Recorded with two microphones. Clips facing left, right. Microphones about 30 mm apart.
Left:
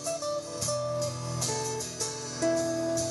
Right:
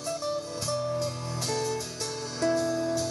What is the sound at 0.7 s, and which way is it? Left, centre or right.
Music, right.